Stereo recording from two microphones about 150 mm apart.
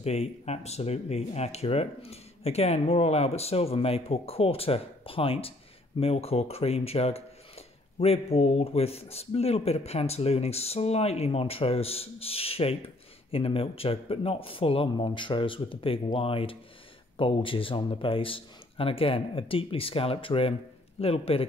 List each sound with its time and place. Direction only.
0.0 s speech: 45° left (ahead or behind)